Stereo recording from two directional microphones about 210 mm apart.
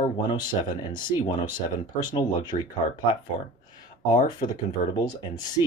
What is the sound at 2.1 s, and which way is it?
Speech, 20° left (ahead or behind).